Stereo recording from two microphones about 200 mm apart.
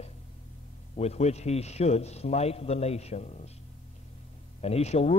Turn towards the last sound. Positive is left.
turn(degrees=30)  # may be behind; listen again after turning